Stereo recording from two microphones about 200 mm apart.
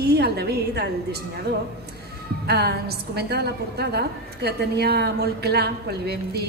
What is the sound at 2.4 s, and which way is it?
A woman's voice, 55° right (ahead or behind).